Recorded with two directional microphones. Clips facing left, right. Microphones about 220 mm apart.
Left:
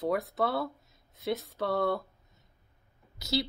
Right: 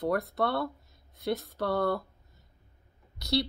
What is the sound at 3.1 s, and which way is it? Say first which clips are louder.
Speech: right 2 dB; centre (ahead or behind).